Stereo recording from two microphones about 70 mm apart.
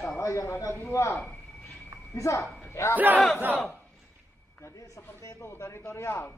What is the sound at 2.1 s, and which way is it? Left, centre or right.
Speech, left.